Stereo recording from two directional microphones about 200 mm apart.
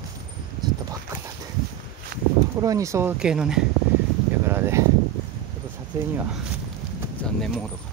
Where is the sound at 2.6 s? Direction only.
15° right (ahead or behind).